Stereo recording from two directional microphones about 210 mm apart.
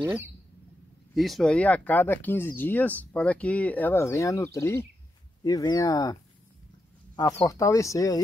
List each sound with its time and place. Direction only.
1.1 s speech: centre (ahead or behind); by 6.1 s 20° left (ahead or behind)
7.4 s speech: 15° left (ahead or behind)